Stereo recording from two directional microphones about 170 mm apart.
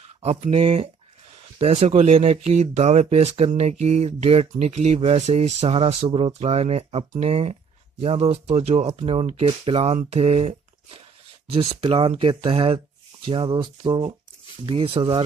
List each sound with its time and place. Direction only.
0.2 s speech: 40° right (ahead or behind)